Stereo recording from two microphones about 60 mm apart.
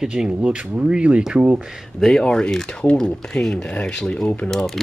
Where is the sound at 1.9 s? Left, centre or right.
Centre.